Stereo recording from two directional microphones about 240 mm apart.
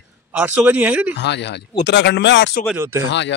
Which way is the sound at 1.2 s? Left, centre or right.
Left.